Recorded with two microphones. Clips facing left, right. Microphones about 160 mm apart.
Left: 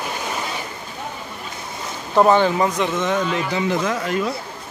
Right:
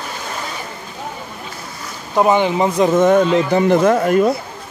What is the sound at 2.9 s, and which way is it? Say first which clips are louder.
Speech: right 9 dB; 50° right (ahead or behind).